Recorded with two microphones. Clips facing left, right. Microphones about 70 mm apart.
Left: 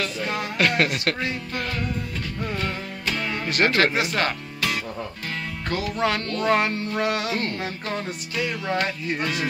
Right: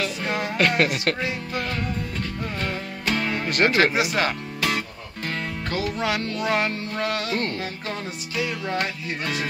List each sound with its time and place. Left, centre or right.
0.0 s music: centre
0.7 s speech: centre
2.6 s music: centre
3.5 s speech: centre
5.7 s music: centre